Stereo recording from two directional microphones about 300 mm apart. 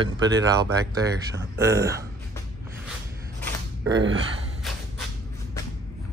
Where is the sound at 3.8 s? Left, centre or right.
Right.